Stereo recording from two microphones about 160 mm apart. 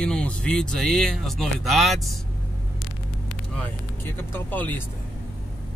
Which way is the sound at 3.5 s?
10° left (ahead or behind).